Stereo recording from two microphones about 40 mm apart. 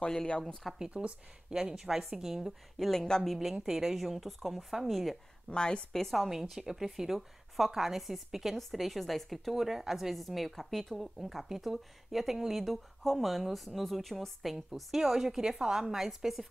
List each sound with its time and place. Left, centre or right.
0.7 s a woman's voice: right; by 2.9 s centre
2.9 s speech: centre
3.5 s a woman's voice: centre
5.5 s a woman's voice: left
5.9 s a woman's voice: centre